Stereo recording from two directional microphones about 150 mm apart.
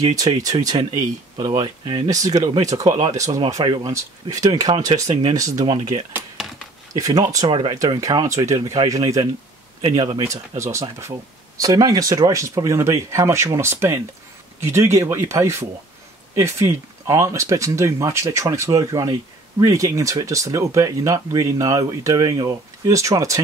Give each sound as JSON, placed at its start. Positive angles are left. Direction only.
{"t": 0.0, "sound": "speech", "side_deg": -25}
{"t": 2.0, "sound": "speech", "side_deg": -25}
{"t": 6.4, "sound": "a sound", "side_deg": 0}
{"t": 6.9, "sound": "speech", "side_deg": -25}